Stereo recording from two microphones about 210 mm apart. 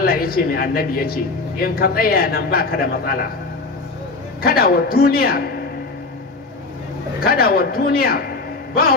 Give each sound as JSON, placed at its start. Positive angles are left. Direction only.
{"t": 0.0, "sound": "a man's voice", "side_deg": 45}
{"t": 4.4, "sound": "a man's voice", "side_deg": 45}
{"t": 7.2, "sound": "a man's voice", "side_deg": 45}